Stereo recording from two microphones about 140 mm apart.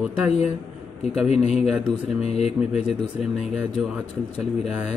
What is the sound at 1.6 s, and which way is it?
Speech, centre (ahead or behind).